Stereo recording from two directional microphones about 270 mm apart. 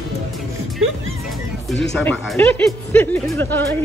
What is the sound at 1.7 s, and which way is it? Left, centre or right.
Speech, centre.